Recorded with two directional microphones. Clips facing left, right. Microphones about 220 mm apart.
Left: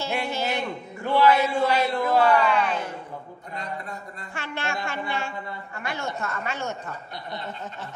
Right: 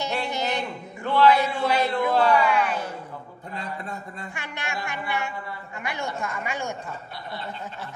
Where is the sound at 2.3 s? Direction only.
10° right (ahead or behind).